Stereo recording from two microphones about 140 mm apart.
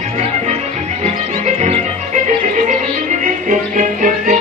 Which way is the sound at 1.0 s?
50° right (ahead or behind).